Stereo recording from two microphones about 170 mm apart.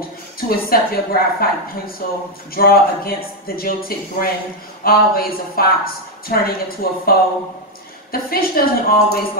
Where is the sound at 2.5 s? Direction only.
60° left (ahead or behind).